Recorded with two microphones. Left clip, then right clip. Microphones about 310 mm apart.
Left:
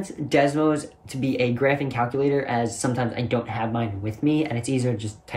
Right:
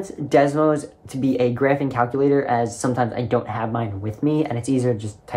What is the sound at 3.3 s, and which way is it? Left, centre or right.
Speech, centre.